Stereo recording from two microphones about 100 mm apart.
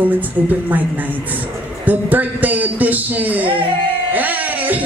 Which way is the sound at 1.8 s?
15° right (ahead or behind).